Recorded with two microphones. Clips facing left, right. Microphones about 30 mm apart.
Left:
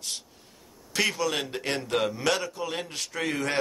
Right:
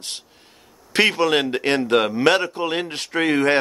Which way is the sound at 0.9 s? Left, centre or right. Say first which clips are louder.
Right 9 dB; right.